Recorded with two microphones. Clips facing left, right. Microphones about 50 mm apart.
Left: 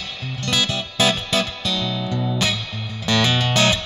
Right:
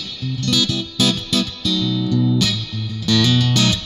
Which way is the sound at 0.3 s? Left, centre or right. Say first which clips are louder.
Right 3 dB; left.